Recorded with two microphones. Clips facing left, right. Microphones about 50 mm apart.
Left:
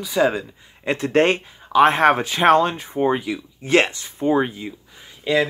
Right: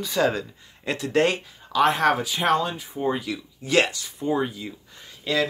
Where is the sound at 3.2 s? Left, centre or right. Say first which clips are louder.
Left 4 dB; left.